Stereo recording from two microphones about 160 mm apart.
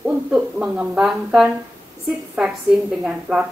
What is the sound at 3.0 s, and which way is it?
Speech, 10° right (ahead or behind).